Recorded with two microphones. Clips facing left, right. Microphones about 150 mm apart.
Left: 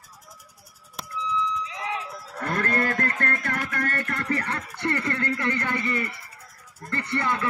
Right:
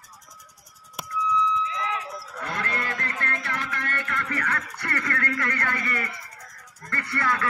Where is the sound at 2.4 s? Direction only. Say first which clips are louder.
Left 6 dB; 45° left (ahead or behind).